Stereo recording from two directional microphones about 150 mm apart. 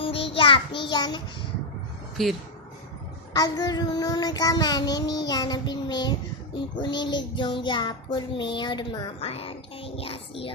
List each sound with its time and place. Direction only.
0.0 s child singing: 35° left (ahead or behind)
2.2 s speech: centre (ahead or behind)
3.3 s child singing: 25° left (ahead or behind)